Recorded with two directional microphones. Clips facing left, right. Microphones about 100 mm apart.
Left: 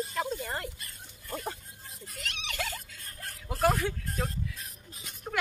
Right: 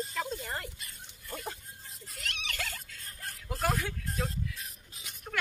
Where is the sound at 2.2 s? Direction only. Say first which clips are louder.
Left 3 dB; 5° left (ahead or behind).